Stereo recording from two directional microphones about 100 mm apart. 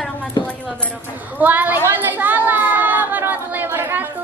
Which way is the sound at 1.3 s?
15° right (ahead or behind).